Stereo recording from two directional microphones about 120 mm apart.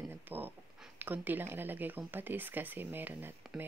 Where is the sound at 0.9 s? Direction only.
15° right (ahead or behind).